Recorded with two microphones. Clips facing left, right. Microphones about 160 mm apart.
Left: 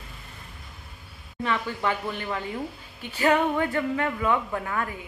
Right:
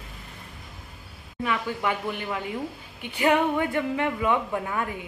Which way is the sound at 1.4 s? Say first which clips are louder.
Even; 10° right (ahead or behind).